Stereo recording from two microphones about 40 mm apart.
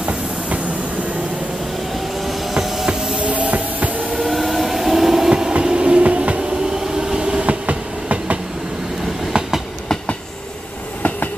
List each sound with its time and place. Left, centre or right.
0.0 s train: right
2.5 s train: centre
2.9 s a sound: centre
3.2 s a sound: right
4.2 s train: centre
5.5 s train: right
6.8 s train: centre
7.4 s train: right
9.3 s train: right
11.0 s train: left